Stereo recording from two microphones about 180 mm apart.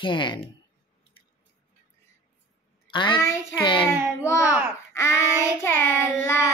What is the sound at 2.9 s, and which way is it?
Speech, 25° left (ahead or behind).